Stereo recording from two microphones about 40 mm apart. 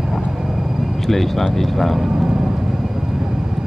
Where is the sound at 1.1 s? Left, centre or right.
Centre.